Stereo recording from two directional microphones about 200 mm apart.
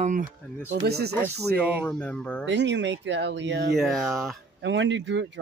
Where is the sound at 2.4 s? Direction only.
65° right (ahead or behind).